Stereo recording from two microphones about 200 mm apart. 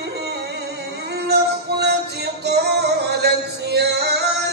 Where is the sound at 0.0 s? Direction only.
55° right (ahead or behind).